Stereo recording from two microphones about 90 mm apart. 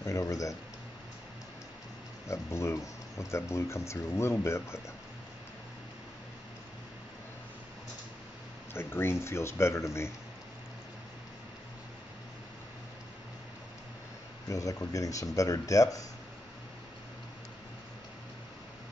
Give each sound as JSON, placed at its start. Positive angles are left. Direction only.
{"t": 0.0, "sound": "speech", "side_deg": 35}
{"t": 2.2, "sound": "speech", "side_deg": 30}
{"t": 8.7, "sound": "speech", "side_deg": 25}
{"t": 14.5, "sound": "speech", "side_deg": 40}